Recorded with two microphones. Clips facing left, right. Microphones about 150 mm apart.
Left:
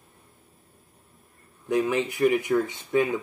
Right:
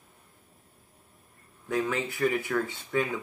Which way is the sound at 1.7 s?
15° left (ahead or behind).